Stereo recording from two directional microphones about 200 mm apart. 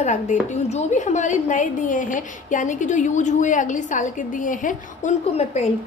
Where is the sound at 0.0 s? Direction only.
35° left (ahead or behind).